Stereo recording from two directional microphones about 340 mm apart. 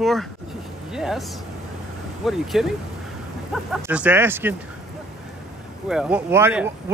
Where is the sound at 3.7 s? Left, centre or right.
Centre.